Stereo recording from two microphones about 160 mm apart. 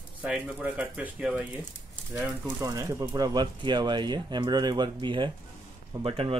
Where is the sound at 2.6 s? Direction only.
20° right (ahead or behind).